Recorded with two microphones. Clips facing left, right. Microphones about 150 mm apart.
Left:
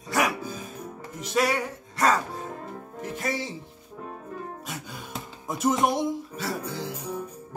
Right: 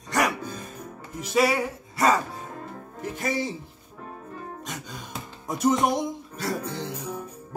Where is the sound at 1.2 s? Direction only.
Centre (ahead or behind).